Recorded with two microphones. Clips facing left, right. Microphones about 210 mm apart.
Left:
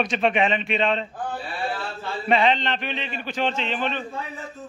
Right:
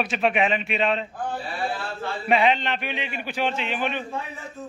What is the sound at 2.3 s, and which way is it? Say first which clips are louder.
A man's voice: even; 10° right (ahead or behind).